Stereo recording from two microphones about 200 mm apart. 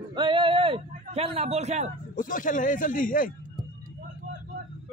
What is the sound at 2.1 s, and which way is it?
Speech, 45° left (ahead or behind).